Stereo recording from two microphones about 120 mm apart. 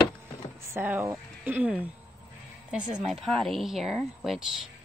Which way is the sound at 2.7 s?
Centre (ahead or behind).